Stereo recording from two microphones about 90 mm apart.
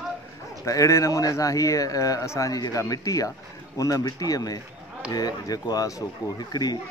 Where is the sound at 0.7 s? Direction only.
35° left (ahead or behind).